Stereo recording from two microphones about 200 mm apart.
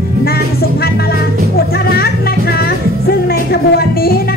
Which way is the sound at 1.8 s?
50° left (ahead or behind).